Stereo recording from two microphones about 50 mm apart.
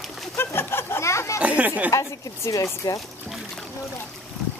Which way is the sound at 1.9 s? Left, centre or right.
Left.